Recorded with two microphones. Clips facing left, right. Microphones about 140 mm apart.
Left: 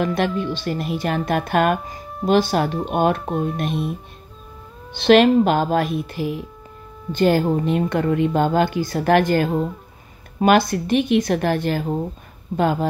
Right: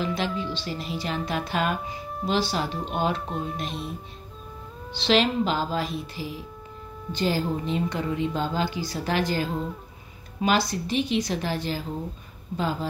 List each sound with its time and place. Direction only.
0.0 s a woman's voice: 55° left (ahead or behind)
4.9 s a woman's voice: 55° left (ahead or behind)